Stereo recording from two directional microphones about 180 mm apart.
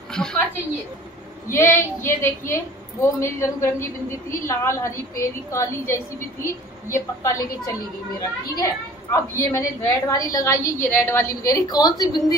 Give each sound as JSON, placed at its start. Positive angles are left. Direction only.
{"t": 0.1, "sound": "a woman's voice", "side_deg": 5}
{"t": 1.5, "sound": "a woman's voice", "side_deg": 15}
{"t": 9.1, "sound": "a woman's voice", "side_deg": 15}